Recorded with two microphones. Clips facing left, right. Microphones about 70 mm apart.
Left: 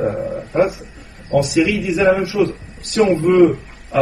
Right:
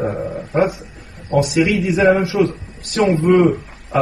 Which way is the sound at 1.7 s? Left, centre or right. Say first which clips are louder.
Right 1 dB; right.